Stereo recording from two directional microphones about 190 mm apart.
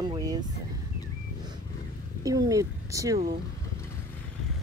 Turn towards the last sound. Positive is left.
turn(degrees=-15)  # may be behind; listen again after turning